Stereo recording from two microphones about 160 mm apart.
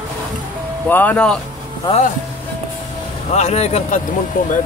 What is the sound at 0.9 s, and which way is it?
Speech, 10° left (ahead or behind).